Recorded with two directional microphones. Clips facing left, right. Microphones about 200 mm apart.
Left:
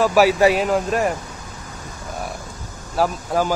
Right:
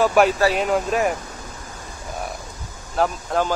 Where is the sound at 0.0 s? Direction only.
5° left (ahead or behind).